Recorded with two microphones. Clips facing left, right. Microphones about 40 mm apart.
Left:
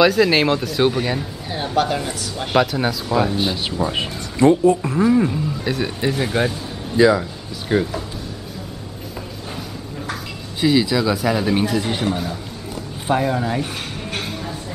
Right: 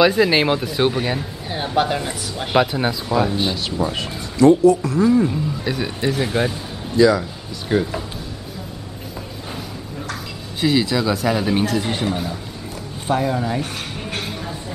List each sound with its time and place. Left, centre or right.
0.1 s speech: centre
3.1 s a man's voice: centre
3.9 s speech: left
5.3 s a man's voice: centre
7.0 s speech: left
7.7 s a man's voice: centre
10.6 s a man's voice: centre
14.1 s a sound: centre